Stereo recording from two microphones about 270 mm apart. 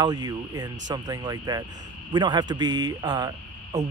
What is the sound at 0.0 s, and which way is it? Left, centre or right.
Speech, centre.